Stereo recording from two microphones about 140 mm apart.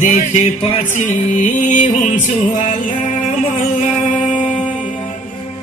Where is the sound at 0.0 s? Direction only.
65° left (ahead or behind).